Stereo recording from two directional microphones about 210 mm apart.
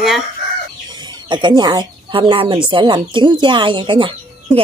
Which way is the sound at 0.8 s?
20° right (ahead or behind).